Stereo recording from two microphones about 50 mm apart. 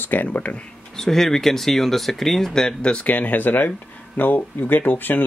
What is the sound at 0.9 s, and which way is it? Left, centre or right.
Speech, centre.